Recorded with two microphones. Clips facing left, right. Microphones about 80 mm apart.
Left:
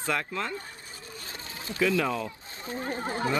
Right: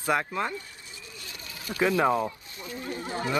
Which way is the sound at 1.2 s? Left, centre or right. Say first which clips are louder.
Right 1 dB; left.